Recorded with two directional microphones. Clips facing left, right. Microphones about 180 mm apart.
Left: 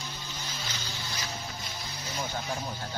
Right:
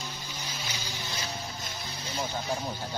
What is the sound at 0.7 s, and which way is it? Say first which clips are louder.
Music: right 1 dB; 10° right (ahead or behind).